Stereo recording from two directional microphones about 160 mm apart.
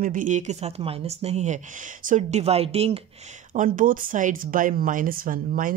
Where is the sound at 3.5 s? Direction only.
55° right (ahead or behind).